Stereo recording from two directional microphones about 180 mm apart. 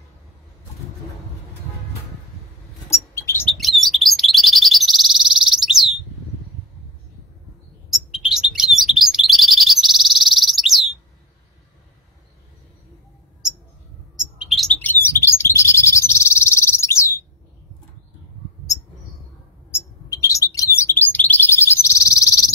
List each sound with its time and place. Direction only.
2.9 s bird: 15° left (ahead or behind)
3.5 s chirp: centre (ahead or behind)
7.9 s chirp: centre (ahead or behind)
14.1 s bird: centre (ahead or behind); by 17.1 s 15° left (ahead or behind)
19.7 s bird: 20° left (ahead or behind)
21.8 s chirp: 15° left (ahead or behind)